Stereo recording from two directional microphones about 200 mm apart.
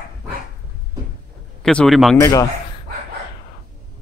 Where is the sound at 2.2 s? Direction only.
15° left (ahead or behind).